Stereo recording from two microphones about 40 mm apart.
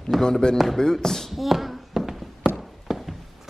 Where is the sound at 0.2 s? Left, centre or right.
Centre.